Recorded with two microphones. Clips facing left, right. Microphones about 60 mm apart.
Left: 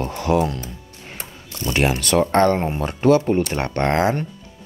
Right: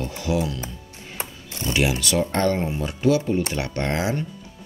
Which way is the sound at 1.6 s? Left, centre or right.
Left.